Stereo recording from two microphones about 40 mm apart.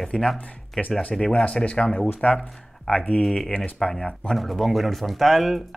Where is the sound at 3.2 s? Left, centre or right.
Centre.